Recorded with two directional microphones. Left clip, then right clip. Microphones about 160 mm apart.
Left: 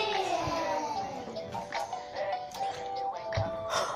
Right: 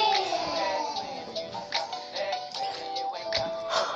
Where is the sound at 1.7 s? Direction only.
25° right (ahead or behind).